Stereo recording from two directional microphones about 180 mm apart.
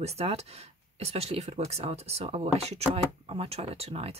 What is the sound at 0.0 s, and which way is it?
A woman's voice, 35° right (ahead or behind).